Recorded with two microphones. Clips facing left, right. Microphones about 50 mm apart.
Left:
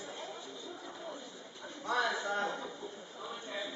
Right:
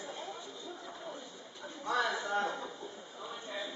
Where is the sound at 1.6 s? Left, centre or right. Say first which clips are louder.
Even; centre.